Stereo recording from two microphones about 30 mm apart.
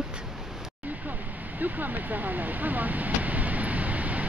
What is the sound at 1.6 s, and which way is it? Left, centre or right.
Speech, right.